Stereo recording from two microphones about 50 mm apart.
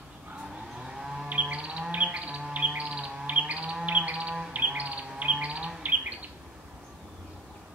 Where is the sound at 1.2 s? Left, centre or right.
Right.